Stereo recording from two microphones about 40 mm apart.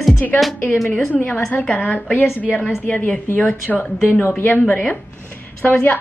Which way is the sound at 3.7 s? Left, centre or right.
Centre.